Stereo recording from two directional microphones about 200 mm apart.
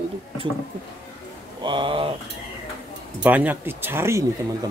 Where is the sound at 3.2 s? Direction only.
10° right (ahead or behind).